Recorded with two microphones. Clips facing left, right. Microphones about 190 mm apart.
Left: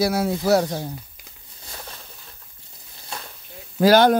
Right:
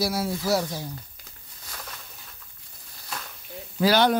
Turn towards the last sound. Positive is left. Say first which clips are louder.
# left 6 dB
turn(degrees=45)  # may be behind; listen again after turning